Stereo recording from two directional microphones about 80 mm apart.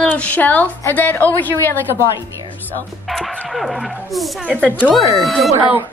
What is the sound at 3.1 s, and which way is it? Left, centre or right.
Speech, centre.